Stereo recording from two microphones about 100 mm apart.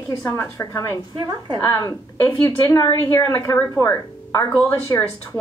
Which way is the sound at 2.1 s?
25° left (ahead or behind).